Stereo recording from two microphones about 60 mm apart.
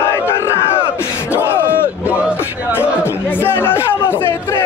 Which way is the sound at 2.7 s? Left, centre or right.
Left.